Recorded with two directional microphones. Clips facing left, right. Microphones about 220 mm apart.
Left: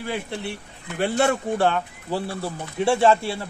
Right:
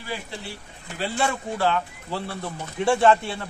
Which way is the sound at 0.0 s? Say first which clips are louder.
Left 5 dB; 55° left (ahead or behind).